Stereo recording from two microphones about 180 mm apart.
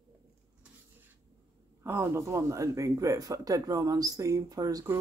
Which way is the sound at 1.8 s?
15° right (ahead or behind).